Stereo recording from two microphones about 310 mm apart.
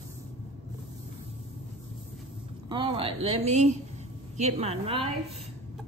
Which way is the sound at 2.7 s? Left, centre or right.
Centre.